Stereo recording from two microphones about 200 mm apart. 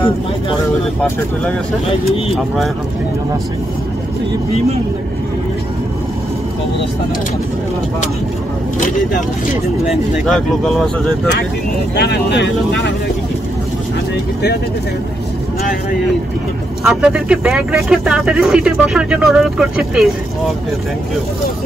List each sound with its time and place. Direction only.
2.3 s speech: centre (ahead or behind)
9.8 s speech: centre (ahead or behind)
11.9 s speech: 55° left (ahead or behind)
16.8 s speech: centre (ahead or behind)